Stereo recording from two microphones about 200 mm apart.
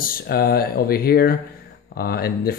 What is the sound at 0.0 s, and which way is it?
Speech, 50° left (ahead or behind).